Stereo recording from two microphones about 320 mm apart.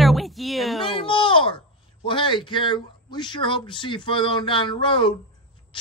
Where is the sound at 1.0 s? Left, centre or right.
Centre.